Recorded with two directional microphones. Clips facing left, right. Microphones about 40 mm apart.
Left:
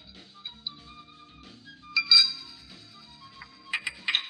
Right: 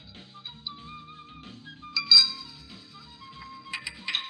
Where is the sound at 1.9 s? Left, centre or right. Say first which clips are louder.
Even; left.